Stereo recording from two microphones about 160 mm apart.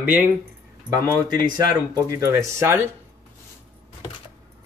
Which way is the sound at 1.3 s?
25° right (ahead or behind).